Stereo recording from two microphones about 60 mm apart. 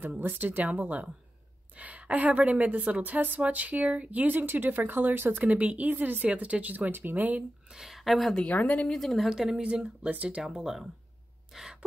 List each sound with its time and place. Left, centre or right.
0.2 s a woman's voice: right
5.4 s a woman's voice: right
5.9 s speech: right
6.2 s a woman's voice: right
7.7 s speech: centre
8.5 s speech: left
8.9 s speech: centre
9.3 s speech: centre
9.6 s a woman's voice: centre
10.6 s speech: centre
11.5 s a sound: centre